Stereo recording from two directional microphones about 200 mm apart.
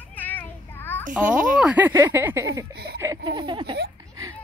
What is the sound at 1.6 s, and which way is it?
Speech, 5° right (ahead or behind).